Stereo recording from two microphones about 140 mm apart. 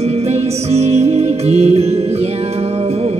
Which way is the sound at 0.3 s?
50° right (ahead or behind).